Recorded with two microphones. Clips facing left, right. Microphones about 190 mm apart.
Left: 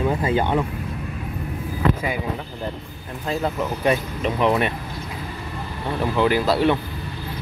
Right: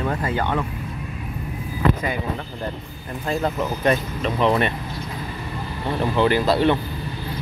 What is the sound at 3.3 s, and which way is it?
Speech, 5° left (ahead or behind).